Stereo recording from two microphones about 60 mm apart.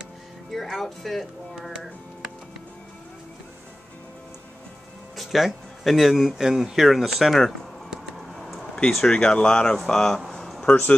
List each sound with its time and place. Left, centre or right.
0.5 s speech: centre
1.6 s music: centre
5.1 s speech: centre
8.2 s a sound: centre
8.9 s speech: centre
10.2 s a sound: centre
10.7 s speech: left